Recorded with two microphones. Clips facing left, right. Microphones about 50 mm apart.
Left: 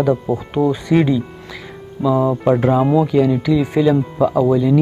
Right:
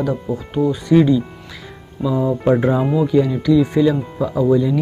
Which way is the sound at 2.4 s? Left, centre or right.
Centre.